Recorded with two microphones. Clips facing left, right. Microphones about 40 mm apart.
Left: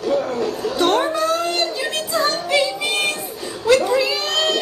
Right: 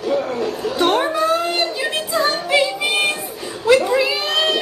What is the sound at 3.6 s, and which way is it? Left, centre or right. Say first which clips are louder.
Cat: right 1 dB; centre.